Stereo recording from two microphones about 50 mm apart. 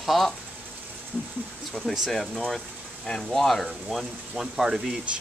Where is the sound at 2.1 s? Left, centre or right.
Centre.